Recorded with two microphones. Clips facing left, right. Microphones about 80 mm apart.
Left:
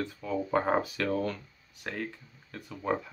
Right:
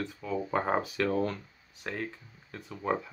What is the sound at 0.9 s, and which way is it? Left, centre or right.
Speech, centre.